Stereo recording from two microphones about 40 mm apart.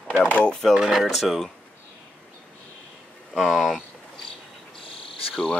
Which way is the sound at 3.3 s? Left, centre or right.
Centre.